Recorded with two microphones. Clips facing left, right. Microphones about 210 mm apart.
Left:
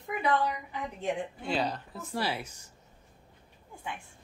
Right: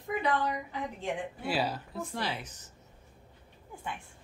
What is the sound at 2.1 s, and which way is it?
Speech, 10° left (ahead or behind).